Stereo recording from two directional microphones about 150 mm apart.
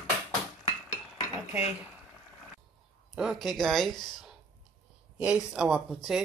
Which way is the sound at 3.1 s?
5° right (ahead or behind).